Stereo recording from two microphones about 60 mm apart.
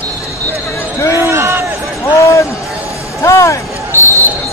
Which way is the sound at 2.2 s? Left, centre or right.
Left.